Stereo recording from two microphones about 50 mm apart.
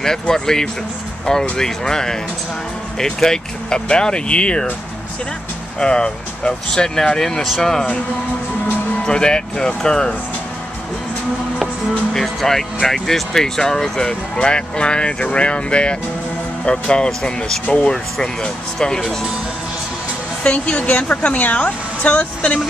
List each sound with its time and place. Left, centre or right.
0.0 s speech: centre
5.8 s speech: centre
9.0 s speech: centre
12.1 s speech: centre
20.4 s speech: left